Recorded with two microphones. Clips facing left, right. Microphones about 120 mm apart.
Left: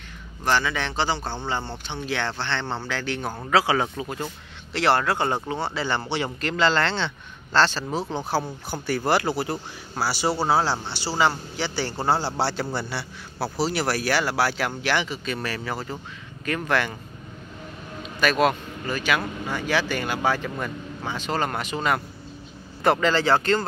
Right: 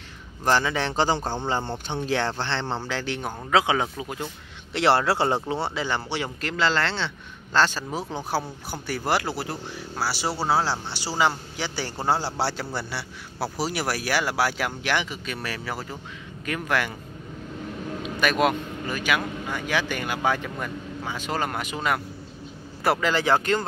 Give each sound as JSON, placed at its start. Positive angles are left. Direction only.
{"t": 0.5, "sound": "speech", "side_deg": -35}
{"t": 2.6, "sound": "a man's voice", "side_deg": -10}
{"t": 2.9, "sound": "a man's voice", "side_deg": -25}
{"t": 3.8, "sound": "a man's voice", "side_deg": -5}
{"t": 4.7, "sound": "a man's voice", "side_deg": -25}
{"t": 5.8, "sound": "a man's voice", "side_deg": -10}
{"t": 18.0, "sound": "a man's voice", "side_deg": -15}
{"t": 20.4, "sound": "a man's voice", "side_deg": 0}